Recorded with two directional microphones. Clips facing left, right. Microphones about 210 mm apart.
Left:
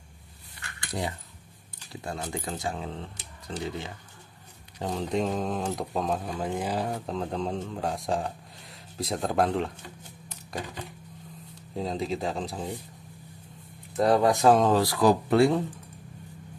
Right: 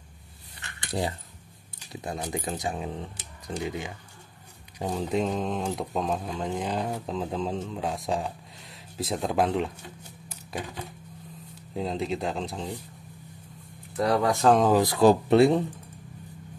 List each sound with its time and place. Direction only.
0.6 s keys jangling: 30° right (ahead or behind)
1.8 s speech: 15° right (ahead or behind)
11.7 s speech: centre (ahead or behind)
13.9 s speech: 25° left (ahead or behind)
14.4 s speech: 5° left (ahead or behind)
14.7 s speech: 20° right (ahead or behind)